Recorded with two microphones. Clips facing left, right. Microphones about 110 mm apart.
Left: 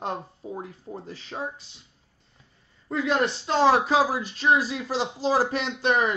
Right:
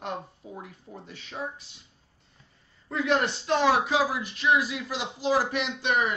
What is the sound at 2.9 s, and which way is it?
Speech, 30° left (ahead or behind).